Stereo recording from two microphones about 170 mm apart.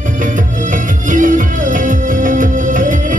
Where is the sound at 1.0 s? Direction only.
50° right (ahead or behind).